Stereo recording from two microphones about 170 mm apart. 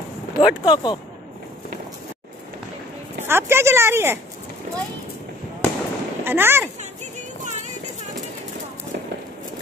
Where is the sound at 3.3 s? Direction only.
15° right (ahead or behind).